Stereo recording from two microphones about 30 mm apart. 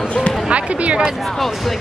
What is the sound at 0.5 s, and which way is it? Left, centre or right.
Speech, right.